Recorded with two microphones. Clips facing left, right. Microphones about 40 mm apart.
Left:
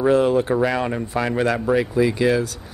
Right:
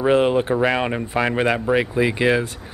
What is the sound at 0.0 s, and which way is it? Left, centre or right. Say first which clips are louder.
A man's voice: even; right.